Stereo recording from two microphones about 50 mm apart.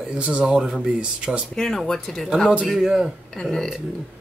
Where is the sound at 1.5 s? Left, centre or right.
Centre.